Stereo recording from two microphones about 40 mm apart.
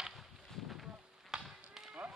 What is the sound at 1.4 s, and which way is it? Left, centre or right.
Livestock, centre.